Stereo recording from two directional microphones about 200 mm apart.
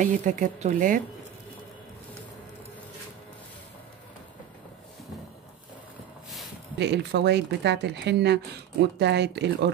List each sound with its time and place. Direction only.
0.0 s speech: 40° right (ahead or behind)
6.8 s speech: 55° right (ahead or behind)